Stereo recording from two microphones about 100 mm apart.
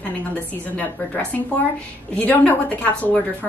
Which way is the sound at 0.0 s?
15° left (ahead or behind).